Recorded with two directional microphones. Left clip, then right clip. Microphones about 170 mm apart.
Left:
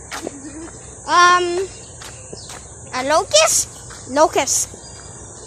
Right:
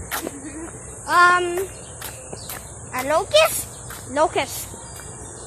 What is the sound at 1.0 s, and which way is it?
Babbling, 55° left (ahead or behind).